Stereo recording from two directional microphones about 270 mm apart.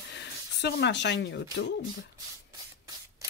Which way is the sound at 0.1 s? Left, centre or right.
Left.